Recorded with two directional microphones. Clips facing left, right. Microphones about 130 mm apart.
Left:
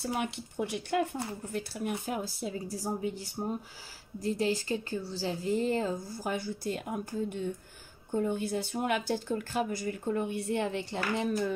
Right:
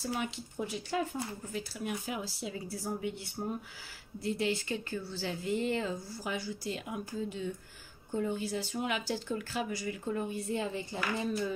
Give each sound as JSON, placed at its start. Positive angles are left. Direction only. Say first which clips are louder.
{"t": 0.2, "sound": "speech", "louder": "left 3 dB", "side_deg": 60}
{"t": 1.5, "sound": "a woman's voice", "louder": "left 4 dB", "side_deg": 50}